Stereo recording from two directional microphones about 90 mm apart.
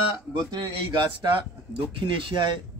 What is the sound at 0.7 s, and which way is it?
A man's voice, 60° right (ahead or behind).